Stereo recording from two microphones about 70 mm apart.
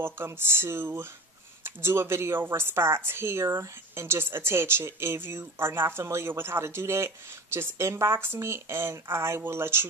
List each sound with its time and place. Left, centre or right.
0.0 s speech: right